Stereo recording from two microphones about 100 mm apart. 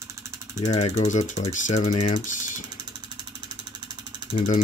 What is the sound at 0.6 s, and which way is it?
Speech, 90° left.